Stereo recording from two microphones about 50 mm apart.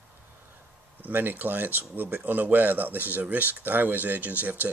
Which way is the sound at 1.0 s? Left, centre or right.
Right.